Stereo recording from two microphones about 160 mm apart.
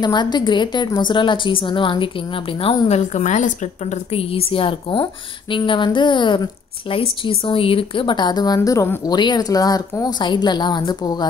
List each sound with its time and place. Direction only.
0.0 s a woman's voice: 25° left (ahead or behind)
3.1 s a woman's voice: 50° left (ahead or behind); by 11.2 s 25° left (ahead or behind)